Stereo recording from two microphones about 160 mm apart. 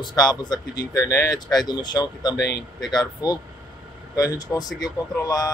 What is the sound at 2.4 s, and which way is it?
Speech, 90° left.